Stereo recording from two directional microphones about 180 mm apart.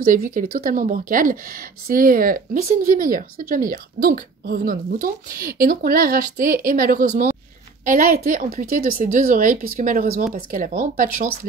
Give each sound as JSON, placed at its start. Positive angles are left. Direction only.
{"t": 0.0, "sound": "a woman's voice", "side_deg": -50}